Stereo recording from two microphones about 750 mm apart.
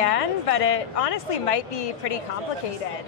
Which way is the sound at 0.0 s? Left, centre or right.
Left.